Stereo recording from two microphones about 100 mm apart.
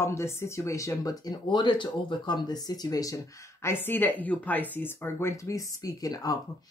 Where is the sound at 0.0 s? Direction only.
30° left (ahead or behind).